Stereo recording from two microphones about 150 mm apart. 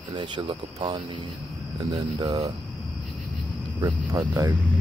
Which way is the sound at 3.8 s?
25° right (ahead or behind).